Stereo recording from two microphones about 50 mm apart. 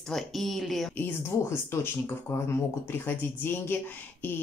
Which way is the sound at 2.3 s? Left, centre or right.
Left.